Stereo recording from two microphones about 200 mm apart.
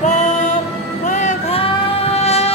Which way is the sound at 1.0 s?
35° left (ahead or behind).